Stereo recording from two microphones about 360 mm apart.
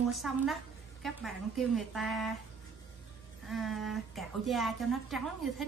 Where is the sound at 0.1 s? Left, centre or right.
Centre.